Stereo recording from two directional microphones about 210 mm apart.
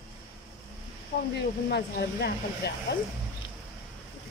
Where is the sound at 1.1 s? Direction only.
55° left (ahead or behind).